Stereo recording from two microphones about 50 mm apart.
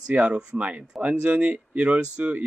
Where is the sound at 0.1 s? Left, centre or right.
Right.